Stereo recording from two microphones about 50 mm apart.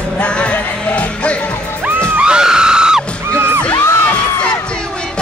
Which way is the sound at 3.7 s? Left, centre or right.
Left.